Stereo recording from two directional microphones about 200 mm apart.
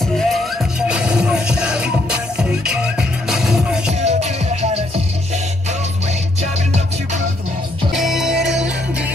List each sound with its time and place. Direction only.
0.0 s music: centre (ahead or behind)
4.0 s music: 35° right (ahead or behind)
7.9 s music: centre (ahead or behind)